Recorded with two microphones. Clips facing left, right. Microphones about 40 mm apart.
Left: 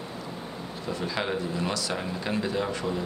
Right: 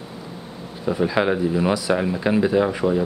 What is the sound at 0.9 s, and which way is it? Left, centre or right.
Speech, centre.